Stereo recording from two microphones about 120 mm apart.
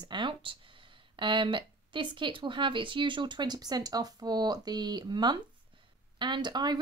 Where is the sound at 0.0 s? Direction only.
40° right (ahead or behind).